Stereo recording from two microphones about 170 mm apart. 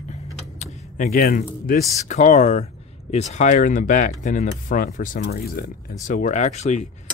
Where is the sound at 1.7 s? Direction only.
45° left (ahead or behind); by 5.9 s 65° left (ahead or behind).